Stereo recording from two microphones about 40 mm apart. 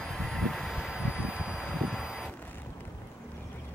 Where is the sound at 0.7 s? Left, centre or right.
Centre.